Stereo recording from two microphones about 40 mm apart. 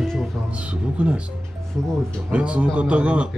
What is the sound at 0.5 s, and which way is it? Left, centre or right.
Speech, right.